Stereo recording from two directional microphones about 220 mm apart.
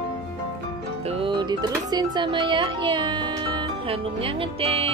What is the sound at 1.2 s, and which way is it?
Speech, 20° right (ahead or behind).